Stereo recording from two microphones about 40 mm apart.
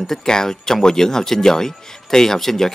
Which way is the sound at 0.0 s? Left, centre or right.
Centre.